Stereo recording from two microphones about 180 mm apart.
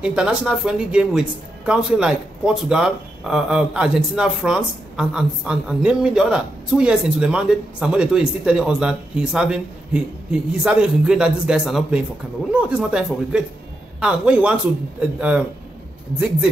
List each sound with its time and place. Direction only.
0.0 s a man's voice: 5° right (ahead or behind)